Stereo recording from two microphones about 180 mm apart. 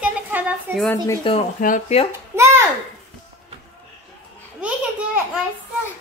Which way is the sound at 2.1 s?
15° right (ahead or behind).